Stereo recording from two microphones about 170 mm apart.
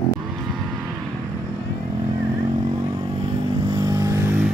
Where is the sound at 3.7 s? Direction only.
20° right (ahead or behind).